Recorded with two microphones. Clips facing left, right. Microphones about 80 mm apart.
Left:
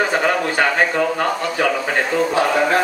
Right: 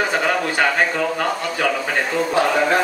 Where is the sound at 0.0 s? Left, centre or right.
Centre.